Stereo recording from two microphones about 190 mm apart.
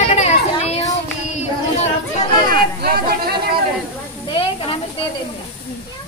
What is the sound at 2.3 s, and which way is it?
Speech, 20° left (ahead or behind).